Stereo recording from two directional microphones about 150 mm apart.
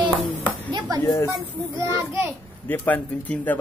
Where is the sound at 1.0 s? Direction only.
20° left (ahead or behind).